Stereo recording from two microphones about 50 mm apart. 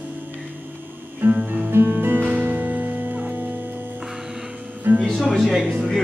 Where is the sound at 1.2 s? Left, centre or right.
Right.